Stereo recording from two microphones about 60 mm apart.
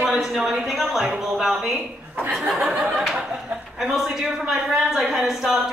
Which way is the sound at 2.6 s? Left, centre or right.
Right.